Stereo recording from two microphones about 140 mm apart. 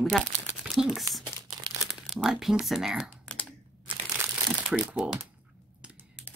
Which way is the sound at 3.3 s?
5° left (ahead or behind).